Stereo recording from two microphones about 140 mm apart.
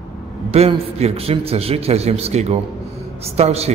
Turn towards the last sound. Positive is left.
turn(degrees=-50)  # may be behind; listen again after turning